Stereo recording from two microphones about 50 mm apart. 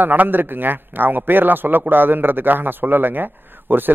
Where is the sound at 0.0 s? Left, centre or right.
Right.